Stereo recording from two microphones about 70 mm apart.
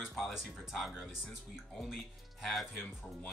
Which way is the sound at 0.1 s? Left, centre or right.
Centre.